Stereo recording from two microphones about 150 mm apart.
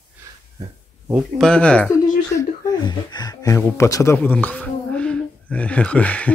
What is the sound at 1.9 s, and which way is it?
Speech, 20° left (ahead or behind).